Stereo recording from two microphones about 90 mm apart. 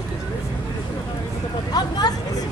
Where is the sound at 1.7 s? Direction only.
50° left (ahead or behind).